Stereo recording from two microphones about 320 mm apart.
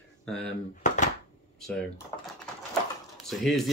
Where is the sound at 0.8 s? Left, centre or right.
Left.